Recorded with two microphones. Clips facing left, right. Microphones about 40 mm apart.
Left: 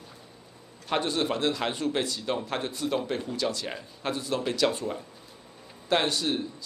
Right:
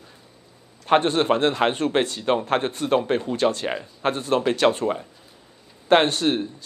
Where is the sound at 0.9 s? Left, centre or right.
Right.